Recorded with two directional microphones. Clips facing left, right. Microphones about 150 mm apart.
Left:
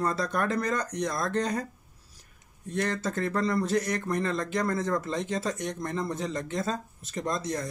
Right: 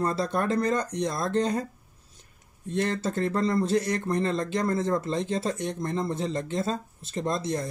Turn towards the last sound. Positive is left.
turn(degrees=-30)  # may be behind; listen again after turning